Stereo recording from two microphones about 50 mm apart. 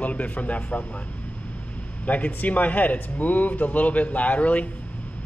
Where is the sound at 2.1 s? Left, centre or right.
Left.